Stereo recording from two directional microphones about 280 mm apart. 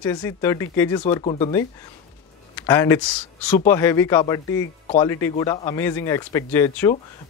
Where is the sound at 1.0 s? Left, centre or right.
Left.